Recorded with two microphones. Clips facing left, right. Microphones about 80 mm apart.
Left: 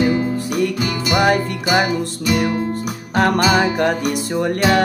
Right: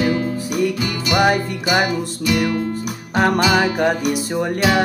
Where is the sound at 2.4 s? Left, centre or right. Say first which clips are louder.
Left 1 dB; left.